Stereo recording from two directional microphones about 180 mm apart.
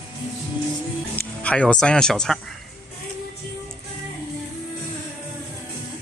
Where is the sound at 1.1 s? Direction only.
5° left (ahead or behind).